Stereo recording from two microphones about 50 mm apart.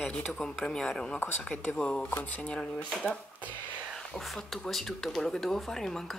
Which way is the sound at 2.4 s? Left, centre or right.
Left.